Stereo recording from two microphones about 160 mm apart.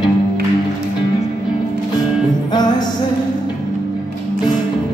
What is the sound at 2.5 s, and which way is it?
Music, 25° left (ahead or behind).